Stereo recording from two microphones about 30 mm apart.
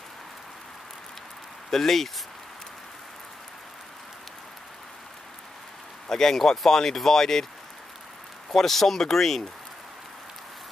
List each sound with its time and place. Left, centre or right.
1.7 s speech: centre
6.0 s speech: centre
8.5 s speech: centre